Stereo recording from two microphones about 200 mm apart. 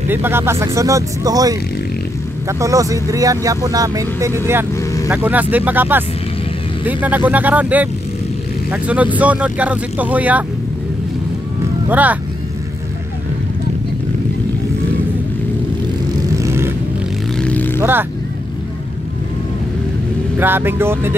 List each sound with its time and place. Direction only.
0.1 s speech: 10° right (ahead or behind)
11.9 s speech: 10° right (ahead or behind)
16.3 s vehicle: 15° right (ahead or behind)
17.4 s vehicle: 5° left (ahead or behind)
20.3 s speech: 10° right (ahead or behind)